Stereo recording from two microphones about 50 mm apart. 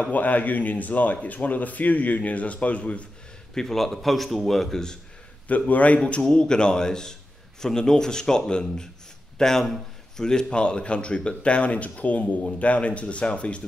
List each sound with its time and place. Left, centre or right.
0.0 s speech: left
3.5 s a man's voice: centre
5.5 s speech: left
6.2 s a man's voice: centre